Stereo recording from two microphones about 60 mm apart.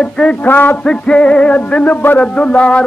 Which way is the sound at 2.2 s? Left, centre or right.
Centre.